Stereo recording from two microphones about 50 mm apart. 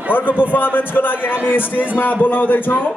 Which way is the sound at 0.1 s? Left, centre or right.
Left.